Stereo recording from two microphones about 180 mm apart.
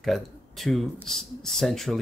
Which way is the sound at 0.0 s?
Centre (ahead or behind).